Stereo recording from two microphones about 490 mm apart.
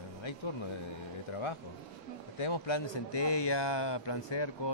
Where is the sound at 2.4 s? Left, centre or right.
Left.